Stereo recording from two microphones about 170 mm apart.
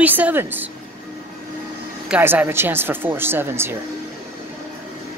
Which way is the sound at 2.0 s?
10° right (ahead or behind).